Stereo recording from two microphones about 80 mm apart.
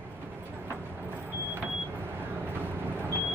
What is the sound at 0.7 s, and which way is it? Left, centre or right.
Vehicle, right.